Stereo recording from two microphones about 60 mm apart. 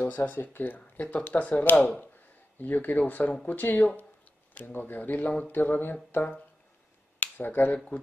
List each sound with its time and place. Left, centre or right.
0.0 s speech: left
2.6 s speech: left
6.1 s speech: left
7.2 s speech: left